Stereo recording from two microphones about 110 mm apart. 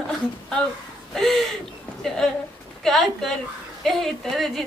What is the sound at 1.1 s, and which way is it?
A woman's voice, 5° left (ahead or behind).